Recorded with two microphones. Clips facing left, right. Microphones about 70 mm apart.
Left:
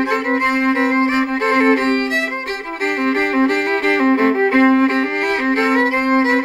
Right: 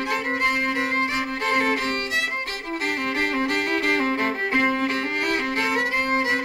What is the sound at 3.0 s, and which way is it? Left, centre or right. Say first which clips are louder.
Music: left 10 dB; left.